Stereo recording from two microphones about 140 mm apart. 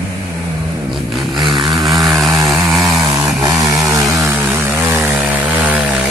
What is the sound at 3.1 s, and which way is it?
Chainsaw, 25° right (ahead or behind).